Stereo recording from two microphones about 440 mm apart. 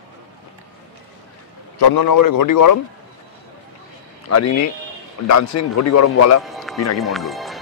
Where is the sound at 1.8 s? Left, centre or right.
Left.